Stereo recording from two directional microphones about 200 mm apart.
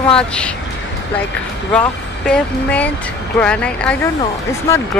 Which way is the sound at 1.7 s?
5° left (ahead or behind).